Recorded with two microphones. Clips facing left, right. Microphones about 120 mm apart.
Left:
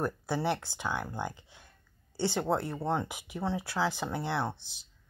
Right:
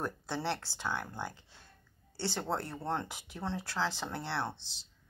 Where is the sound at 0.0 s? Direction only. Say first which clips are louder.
Left 5 dB; 10° left (ahead or behind).